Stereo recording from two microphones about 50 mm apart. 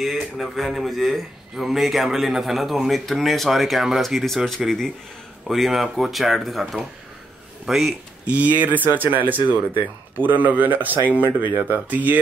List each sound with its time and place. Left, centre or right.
0.0 s speech: centre
5.5 s speech: centre
8.3 s speech: right